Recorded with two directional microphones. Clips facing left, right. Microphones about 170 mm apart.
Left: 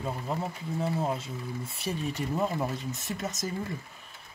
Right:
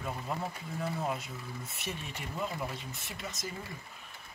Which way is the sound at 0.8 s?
30° left (ahead or behind).